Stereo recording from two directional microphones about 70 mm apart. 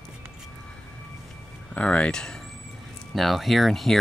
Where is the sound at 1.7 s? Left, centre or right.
Centre.